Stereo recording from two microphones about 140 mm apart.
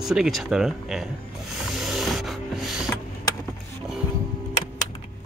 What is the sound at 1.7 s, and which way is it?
Rub, centre (ahead or behind).